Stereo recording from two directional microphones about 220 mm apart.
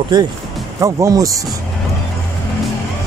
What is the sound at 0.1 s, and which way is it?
Speech, 20° right (ahead or behind).